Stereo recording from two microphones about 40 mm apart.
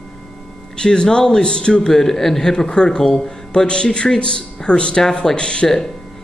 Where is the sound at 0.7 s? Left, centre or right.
Left.